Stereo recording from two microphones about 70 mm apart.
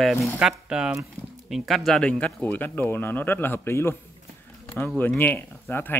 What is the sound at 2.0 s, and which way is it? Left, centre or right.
Speech, left.